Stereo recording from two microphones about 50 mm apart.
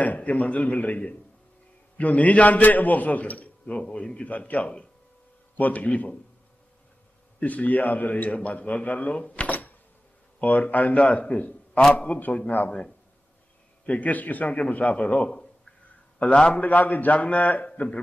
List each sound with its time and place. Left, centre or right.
0.0 s a man's voice: left
7.3 s a man's voice: left
13.8 s a man's voice: left
17.7 s a man's voice: left